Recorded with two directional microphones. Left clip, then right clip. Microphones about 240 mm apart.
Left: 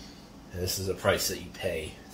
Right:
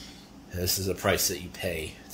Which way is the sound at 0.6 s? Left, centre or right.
Right.